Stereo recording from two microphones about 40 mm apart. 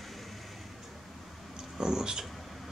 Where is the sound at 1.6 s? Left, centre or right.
Centre.